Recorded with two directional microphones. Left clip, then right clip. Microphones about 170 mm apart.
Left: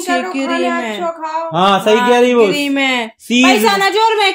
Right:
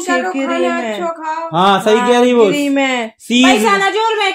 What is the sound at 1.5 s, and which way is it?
Speech, 30° right (ahead or behind).